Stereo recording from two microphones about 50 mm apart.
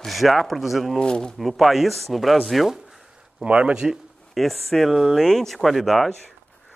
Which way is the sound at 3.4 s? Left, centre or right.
Right.